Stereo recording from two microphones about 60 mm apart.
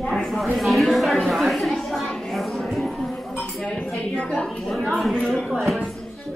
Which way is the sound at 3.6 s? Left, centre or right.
Centre.